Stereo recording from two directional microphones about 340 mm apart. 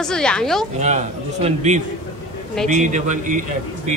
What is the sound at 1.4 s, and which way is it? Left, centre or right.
A man's voice, right.